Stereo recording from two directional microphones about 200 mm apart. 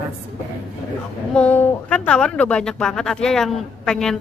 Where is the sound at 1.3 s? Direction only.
5° left (ahead or behind).